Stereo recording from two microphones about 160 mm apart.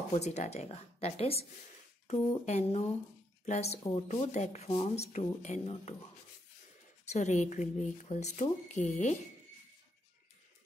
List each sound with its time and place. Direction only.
0.1 s speech: 45° left (ahead or behind)
7.1 s speech: 45° left (ahead or behind)